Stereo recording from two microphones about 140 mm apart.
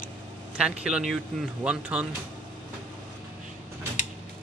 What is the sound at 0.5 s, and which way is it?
Speech, 5° right (ahead or behind).